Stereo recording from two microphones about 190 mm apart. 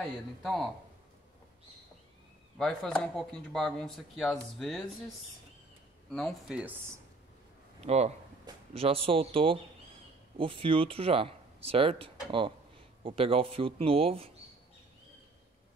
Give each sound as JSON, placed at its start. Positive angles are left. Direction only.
{"t": 0.0, "sound": "speech", "side_deg": 0}
{"t": 2.6, "sound": "speech", "side_deg": 5}
{"t": 6.1, "sound": "speech", "side_deg": 5}
{"t": 7.8, "sound": "speech", "side_deg": -35}